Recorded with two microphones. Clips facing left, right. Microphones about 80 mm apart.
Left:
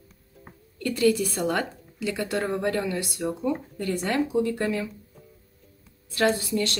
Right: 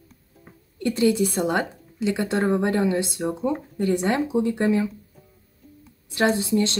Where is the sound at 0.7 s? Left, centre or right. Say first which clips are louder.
Right 2 dB; right.